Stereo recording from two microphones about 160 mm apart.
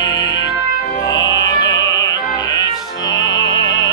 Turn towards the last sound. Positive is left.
turn(degrees=25)  # may be behind; listen again after turning